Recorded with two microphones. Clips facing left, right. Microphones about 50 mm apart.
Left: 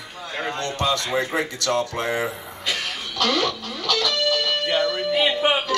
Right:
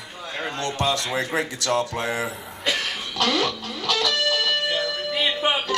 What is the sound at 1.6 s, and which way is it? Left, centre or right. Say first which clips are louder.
Music: even; right.